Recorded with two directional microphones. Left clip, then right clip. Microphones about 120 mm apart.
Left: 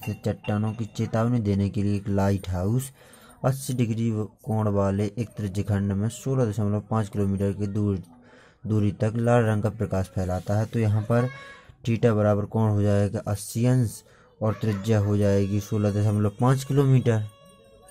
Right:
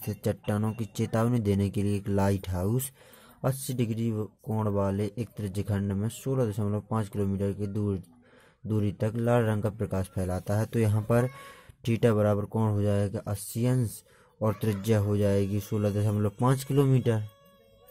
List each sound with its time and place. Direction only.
0.0 s a man's voice: 45° right (ahead or behind); by 13.9 s 20° right (ahead or behind)
14.4 s a man's voice: 40° right (ahead or behind); by 17.3 s 25° right (ahead or behind)